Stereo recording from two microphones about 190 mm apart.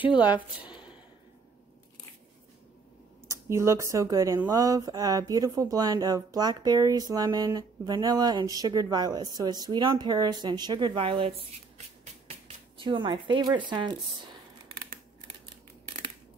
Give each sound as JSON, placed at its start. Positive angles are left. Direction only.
{"t": 3.3, "sound": "speech", "side_deg": -15}
{"t": 12.8, "sound": "speech", "side_deg": -25}